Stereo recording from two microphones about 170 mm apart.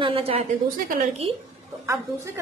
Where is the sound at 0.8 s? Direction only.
45° right (ahead or behind).